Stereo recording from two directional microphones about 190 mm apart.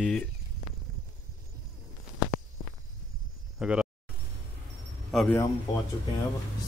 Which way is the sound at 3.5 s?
5° right (ahead or behind).